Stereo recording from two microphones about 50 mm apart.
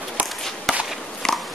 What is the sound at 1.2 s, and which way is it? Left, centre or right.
Biting, centre.